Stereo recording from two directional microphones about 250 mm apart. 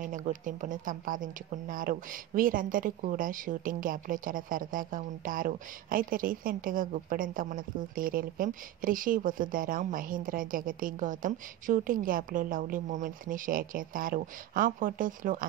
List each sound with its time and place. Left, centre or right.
0.0 s a woman's voice: right